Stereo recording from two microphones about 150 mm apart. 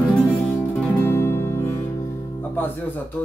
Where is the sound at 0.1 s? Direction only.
5° left (ahead or behind).